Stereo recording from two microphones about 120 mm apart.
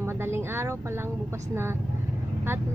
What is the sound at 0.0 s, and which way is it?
Vehicle, 20° right (ahead or behind).